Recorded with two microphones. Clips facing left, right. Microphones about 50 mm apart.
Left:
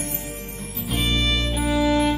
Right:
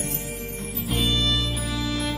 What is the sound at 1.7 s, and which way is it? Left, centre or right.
Music, left.